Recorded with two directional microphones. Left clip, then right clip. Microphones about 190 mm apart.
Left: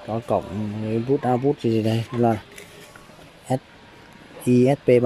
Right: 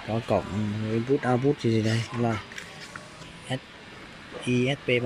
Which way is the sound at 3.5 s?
20° left (ahead or behind).